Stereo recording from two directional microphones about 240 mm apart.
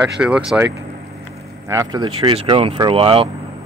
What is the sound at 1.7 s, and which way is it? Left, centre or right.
Speech, centre.